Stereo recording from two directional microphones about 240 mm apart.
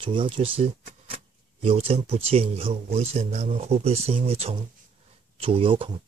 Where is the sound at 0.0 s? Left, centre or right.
Right.